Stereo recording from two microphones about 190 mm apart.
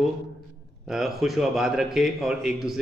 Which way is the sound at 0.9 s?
Centre (ahead or behind).